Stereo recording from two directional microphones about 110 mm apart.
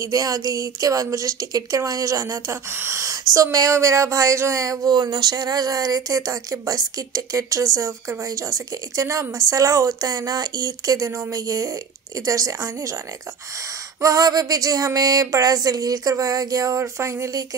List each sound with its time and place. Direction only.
0.0 s speech: 30° right (ahead or behind)
14.0 s speech: 35° right (ahead or behind)